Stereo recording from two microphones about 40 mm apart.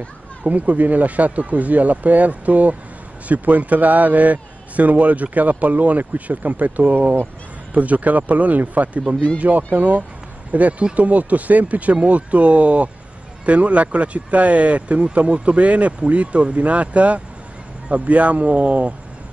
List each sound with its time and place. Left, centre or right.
0.4 s a man's voice: right
10.5 s a man's voice: right